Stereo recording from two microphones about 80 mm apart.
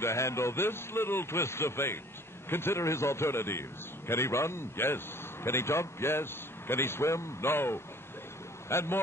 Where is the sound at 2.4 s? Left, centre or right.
Left.